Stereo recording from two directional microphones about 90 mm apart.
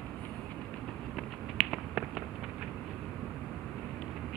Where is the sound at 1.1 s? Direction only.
5° right (ahead or behind).